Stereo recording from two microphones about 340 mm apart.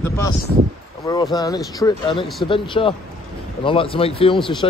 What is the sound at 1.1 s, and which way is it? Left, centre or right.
Speech, centre.